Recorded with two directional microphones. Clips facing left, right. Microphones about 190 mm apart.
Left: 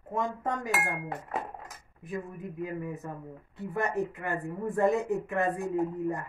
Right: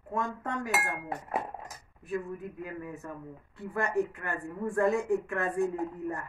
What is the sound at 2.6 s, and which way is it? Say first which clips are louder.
Speech: left 4 dB; 20° left (ahead or behind).